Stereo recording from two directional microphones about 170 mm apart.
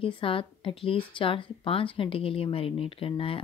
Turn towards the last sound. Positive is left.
turn(degrees=30)  # may be behind; listen again after turning